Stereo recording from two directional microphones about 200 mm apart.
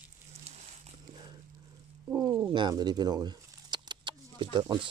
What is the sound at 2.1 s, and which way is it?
Bird, 15° right (ahead or behind).